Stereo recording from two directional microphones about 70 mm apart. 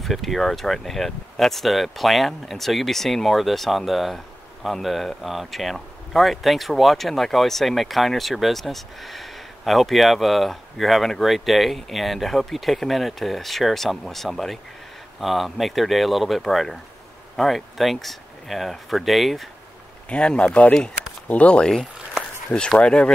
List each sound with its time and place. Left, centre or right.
0.0 s speech: centre
20.1 s speech: centre